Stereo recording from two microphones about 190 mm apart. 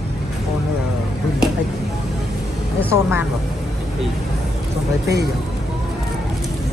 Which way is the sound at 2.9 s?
10° right (ahead or behind).